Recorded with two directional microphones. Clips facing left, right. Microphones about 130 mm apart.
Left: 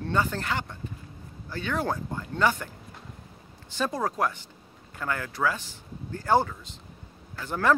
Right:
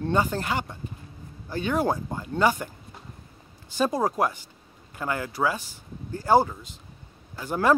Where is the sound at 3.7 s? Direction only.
15° right (ahead or behind).